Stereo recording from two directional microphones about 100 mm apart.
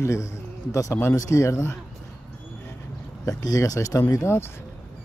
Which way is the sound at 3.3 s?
35° left (ahead or behind).